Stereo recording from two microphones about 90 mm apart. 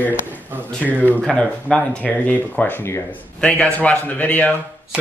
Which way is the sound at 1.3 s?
15° left (ahead or behind).